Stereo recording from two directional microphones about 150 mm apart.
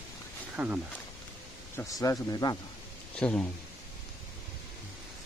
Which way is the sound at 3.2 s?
10° left (ahead or behind).